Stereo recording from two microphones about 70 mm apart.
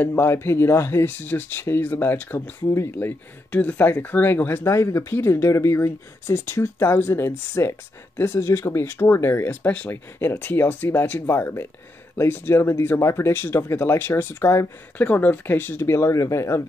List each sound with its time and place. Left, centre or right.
0.0 s speech: left
15.0 s speech: left